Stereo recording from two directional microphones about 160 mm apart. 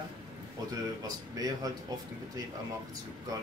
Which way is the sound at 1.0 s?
25° right (ahead or behind).